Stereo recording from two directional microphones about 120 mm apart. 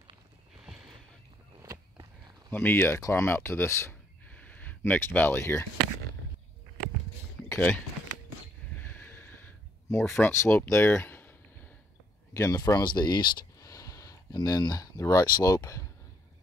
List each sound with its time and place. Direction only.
1.6 s a sound: 25° right (ahead or behind)
2.5 s speech: 15° left (ahead or behind)
7.4 s speech: 15° left (ahead or behind)
8.9 s a sound: 15° left (ahead or behind)
10.2 s speech: 20° left (ahead or behind)
12.4 s speech: 30° left (ahead or behind)